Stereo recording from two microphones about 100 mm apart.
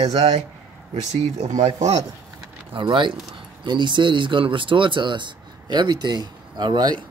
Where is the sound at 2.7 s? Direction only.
55° right (ahead or behind).